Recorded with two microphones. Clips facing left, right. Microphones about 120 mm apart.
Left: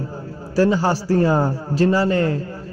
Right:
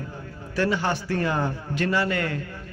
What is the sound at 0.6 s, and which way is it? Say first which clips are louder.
A man's voice: left 7 dB; 35° left (ahead or behind).